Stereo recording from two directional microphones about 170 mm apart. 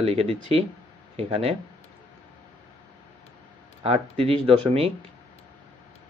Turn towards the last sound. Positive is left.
turn(degrees=-35)  # may be behind; listen again after turning